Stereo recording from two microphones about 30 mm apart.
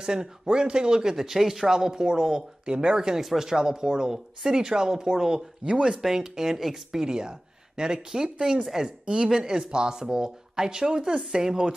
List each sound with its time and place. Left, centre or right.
0.0 s speech: right
1.1 s speech: centre
2.7 s speech: right
3.0 s a woman's voice: right